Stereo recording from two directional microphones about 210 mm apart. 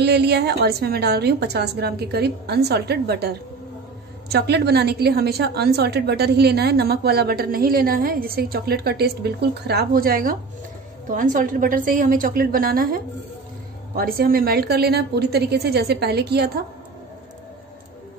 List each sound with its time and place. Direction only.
0.0 s a woman's voice: 50° right (ahead or behind)